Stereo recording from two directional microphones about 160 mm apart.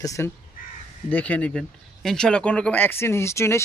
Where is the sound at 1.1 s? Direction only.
10° left (ahead or behind).